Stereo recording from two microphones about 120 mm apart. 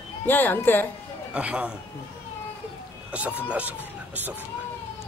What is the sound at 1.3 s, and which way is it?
Speech, 10° right (ahead or behind).